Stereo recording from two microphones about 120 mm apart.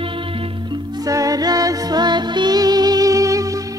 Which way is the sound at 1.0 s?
30° right (ahead or behind).